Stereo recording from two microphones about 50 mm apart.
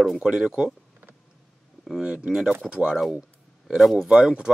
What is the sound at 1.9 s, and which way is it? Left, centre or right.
A man's voice, centre.